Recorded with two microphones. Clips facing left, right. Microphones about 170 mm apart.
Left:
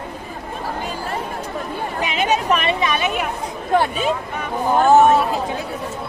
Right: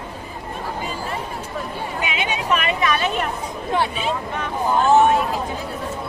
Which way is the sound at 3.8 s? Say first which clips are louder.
Left 2 dB; 45° left (ahead or behind).